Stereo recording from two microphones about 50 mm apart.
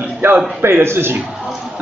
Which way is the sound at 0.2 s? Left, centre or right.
Right.